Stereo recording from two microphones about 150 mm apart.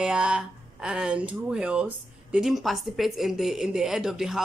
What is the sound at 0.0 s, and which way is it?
Speech, 5° right (ahead or behind).